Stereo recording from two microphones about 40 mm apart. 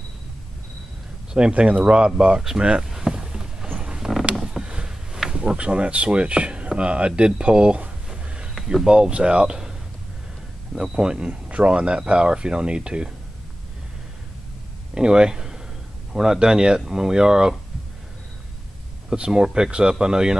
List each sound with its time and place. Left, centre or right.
1.5 s speech: right
2.9 s vehicle: centre
3.8 s a sound: right
5.6 s speech: right
15.0 s speech: right
19.1 s speech: right